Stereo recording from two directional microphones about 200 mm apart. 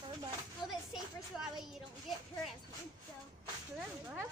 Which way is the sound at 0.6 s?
20° left (ahead or behind).